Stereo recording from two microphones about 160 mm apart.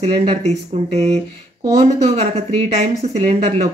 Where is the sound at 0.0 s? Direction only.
40° right (ahead or behind).